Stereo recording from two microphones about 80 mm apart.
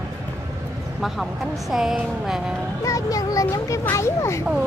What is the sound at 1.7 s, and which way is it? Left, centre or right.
Speech, centre.